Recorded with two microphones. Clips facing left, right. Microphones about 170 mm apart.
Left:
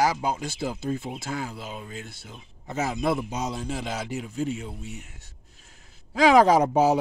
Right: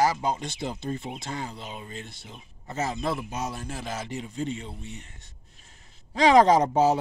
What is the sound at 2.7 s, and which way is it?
Speech, 10° left (ahead or behind).